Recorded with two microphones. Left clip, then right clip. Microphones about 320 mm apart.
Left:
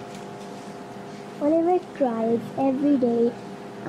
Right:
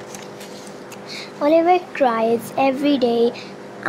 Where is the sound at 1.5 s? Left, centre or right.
Right.